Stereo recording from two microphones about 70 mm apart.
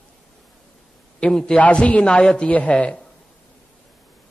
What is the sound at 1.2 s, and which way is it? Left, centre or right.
A man's voice, centre.